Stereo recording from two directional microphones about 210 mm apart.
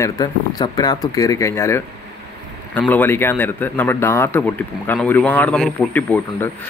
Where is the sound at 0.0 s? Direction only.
20° left (ahead or behind).